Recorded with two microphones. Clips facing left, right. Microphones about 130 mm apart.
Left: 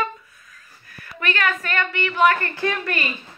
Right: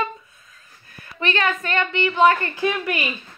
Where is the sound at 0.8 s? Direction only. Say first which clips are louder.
Right 2 dB; 25° right (ahead or behind).